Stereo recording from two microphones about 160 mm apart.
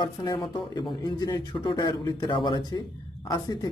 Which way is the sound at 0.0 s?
25° left (ahead or behind).